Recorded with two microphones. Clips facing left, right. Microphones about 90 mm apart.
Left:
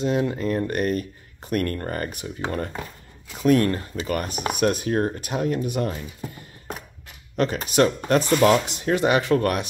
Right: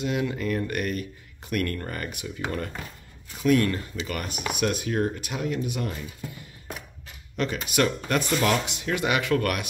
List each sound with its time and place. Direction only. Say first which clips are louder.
0.0 s speech: left 4 dB; 35° left (ahead or behind)
7.3 s speech: left 5 dB; 40° left (ahead or behind)